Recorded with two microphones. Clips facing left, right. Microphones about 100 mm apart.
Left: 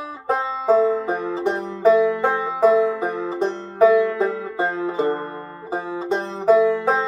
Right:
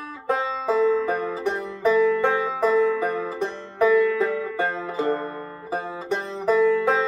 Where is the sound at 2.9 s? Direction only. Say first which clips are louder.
Left 2 dB; 20° left (ahead or behind).